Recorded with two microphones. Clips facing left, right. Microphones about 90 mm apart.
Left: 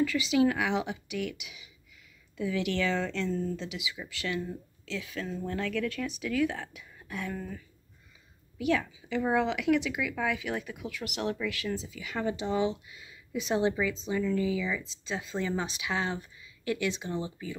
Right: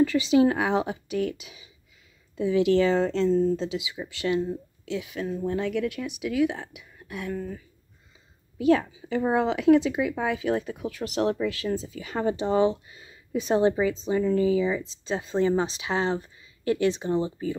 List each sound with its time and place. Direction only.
0.0 s speech: 30° right (ahead or behind); by 7.6 s 5° right (ahead or behind)
8.5 s speech: 35° right (ahead or behind)